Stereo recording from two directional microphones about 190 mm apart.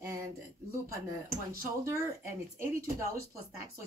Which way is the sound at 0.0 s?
15° right (ahead or behind).